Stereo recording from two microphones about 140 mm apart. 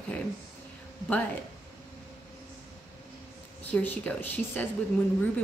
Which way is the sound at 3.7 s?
10° left (ahead or behind).